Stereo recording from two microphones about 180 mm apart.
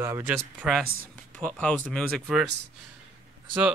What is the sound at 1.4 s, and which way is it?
Speech, 5° left (ahead or behind).